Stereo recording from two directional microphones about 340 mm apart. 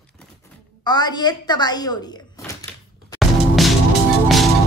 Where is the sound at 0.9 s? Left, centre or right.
Centre.